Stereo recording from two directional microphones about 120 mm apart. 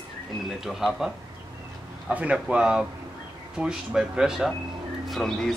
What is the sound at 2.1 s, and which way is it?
Speech, 10° right (ahead or behind).